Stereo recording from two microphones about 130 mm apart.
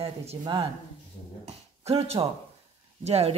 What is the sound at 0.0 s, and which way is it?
Speech, 50° right (ahead or behind).